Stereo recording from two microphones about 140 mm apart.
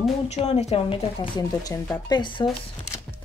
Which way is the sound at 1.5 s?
25° left (ahead or behind).